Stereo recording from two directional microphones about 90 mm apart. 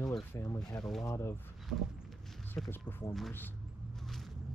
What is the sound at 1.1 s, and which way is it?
Speech, 30° left (ahead or behind).